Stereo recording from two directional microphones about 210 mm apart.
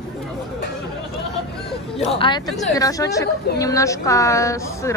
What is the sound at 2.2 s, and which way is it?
A woman's voice, 20° left (ahead or behind).